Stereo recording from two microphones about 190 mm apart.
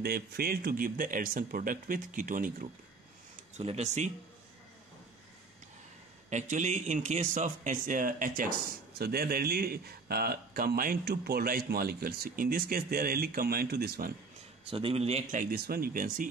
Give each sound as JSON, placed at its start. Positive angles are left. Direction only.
{"t": 0.0, "sound": "a man's voice", "side_deg": -55}
{"t": 3.5, "sound": "speech", "side_deg": -35}
{"t": 6.3, "sound": "a man's voice", "side_deg": -40}
{"t": 14.7, "sound": "speech", "side_deg": -30}
{"t": 15.5, "sound": "a man's voice", "side_deg": -50}